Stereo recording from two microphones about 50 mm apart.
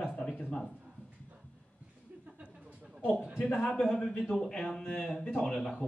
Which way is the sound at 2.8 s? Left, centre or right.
Centre.